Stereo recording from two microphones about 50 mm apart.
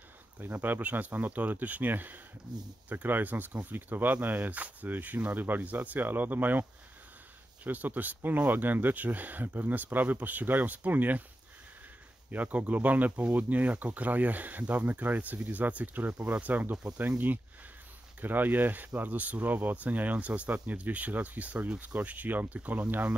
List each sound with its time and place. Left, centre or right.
0.4 s speech: right
7.6 s speech: right
12.3 s speech: right